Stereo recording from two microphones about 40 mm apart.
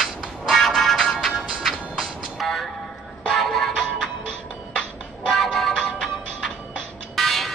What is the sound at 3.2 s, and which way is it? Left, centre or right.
Music, centre.